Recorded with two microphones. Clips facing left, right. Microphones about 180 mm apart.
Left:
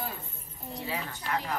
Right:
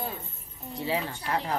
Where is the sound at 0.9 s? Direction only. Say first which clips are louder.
Right 5 dB; 30° right (ahead or behind).